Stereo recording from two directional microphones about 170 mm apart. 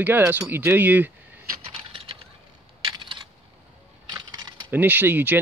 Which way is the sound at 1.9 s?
30° right (ahead or behind).